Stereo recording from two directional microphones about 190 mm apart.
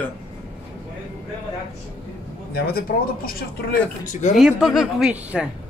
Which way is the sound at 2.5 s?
55° left (ahead or behind).